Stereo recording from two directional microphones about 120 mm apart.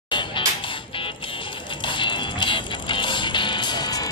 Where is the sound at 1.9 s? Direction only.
40° left (ahead or behind).